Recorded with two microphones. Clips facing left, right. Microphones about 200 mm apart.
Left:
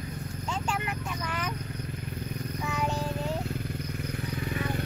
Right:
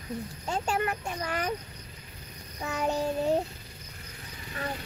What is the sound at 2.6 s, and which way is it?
Music, 40° right (ahead or behind).